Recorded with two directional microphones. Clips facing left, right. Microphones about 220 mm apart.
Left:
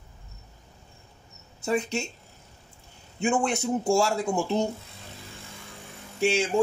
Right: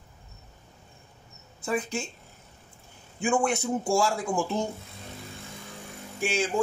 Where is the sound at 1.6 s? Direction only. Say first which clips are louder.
Left 3 dB; 25° left (ahead or behind).